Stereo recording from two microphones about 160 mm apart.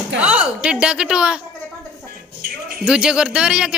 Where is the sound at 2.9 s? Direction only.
5° right (ahead or behind).